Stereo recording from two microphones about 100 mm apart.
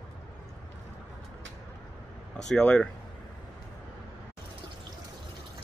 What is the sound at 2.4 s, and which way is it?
Speech, 5° left (ahead or behind).